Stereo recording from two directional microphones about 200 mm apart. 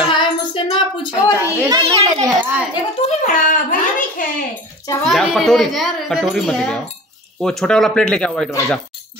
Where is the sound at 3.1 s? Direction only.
40° left (ahead or behind).